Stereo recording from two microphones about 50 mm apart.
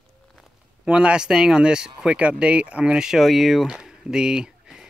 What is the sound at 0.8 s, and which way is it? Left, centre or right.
Speech, centre.